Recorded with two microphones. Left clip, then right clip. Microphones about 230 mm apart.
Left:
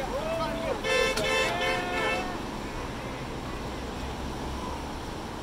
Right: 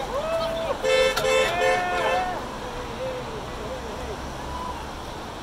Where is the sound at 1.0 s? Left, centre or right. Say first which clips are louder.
Right 5 dB; centre.